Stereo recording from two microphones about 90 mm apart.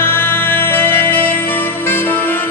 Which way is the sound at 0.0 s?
25° left (ahead or behind).